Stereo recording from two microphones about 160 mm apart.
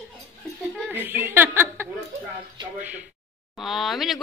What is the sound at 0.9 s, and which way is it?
Chuckle, 10° right (ahead or behind).